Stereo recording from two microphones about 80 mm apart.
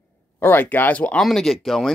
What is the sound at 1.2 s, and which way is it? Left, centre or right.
Speech, centre.